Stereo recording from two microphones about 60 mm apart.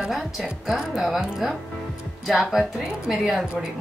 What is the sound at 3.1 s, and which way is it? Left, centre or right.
Speech, centre.